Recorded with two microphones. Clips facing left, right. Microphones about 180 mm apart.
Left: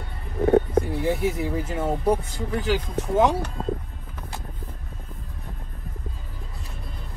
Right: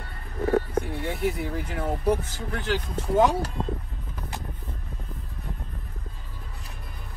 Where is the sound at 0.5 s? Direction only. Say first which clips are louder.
Left 5 dB; 25° left (ahead or behind).